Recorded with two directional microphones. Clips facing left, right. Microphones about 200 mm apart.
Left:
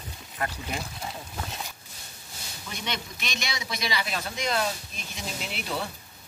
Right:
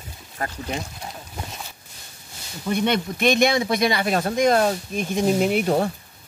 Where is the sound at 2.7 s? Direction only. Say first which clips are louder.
Right 14 dB; 55° right (ahead or behind).